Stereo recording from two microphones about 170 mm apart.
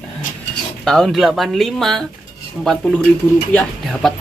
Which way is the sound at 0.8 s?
Centre (ahead or behind).